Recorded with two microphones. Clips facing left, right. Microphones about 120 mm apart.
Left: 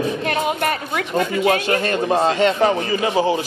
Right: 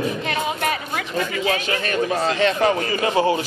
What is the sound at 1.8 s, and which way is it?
A man's voice, 30° left (ahead or behind).